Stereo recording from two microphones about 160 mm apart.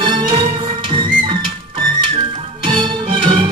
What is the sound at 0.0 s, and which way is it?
Music, 30° right (ahead or behind).